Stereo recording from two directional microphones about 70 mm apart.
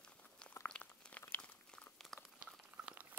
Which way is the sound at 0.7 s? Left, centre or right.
Centre.